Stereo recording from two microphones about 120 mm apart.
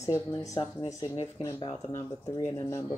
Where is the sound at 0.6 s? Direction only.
45° left (ahead or behind).